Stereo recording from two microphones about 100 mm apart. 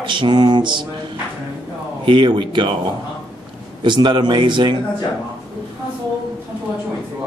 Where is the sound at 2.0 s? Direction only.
55° right (ahead or behind).